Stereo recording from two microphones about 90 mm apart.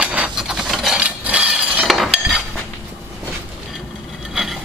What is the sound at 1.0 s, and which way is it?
Chink, 15° right (ahead or behind).